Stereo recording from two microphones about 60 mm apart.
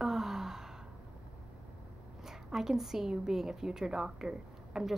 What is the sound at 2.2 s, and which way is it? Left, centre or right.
A woman's voice, centre.